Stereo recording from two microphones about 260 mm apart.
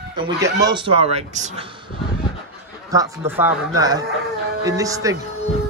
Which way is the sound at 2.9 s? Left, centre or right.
Centre.